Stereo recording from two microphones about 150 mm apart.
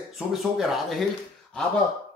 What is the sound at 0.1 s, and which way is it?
Speech, centre (ahead or behind).